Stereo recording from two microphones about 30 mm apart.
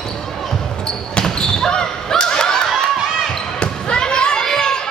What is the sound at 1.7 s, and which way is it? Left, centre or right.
Snicker, left.